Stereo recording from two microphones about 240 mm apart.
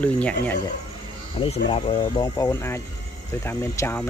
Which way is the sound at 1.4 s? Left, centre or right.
Left.